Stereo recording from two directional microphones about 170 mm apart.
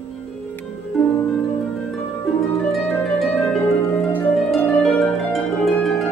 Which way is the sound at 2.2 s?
Centre (ahead or behind).